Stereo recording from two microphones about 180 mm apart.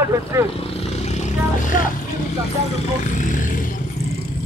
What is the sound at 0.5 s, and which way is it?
Vehicle, 35° left (ahead or behind).